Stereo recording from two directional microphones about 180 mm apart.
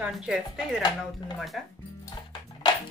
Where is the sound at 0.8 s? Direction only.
25° left (ahead or behind).